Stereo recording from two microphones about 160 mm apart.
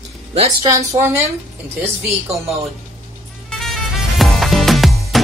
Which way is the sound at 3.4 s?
Centre (ahead or behind).